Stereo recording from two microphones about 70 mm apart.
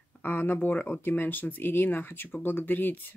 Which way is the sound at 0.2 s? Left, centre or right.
Left.